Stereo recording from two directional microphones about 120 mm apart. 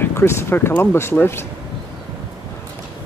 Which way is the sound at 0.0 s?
20° left (ahead or behind).